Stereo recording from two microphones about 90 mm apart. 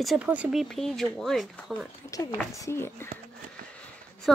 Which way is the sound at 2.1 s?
40° left (ahead or behind).